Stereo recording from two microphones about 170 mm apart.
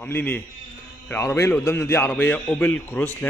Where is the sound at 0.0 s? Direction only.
10° left (ahead or behind).